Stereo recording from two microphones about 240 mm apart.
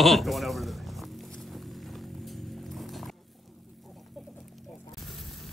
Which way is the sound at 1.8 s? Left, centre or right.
Centre.